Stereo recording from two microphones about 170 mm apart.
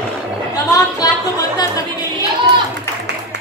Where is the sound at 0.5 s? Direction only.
20° left (ahead or behind).